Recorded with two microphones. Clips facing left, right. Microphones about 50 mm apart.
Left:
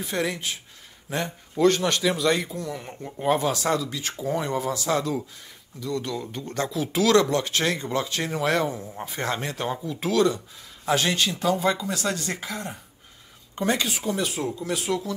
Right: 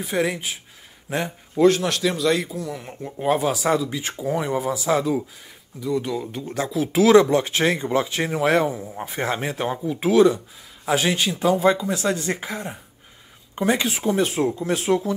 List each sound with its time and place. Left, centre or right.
0.0 s a man's voice: centre
13.8 s speech: right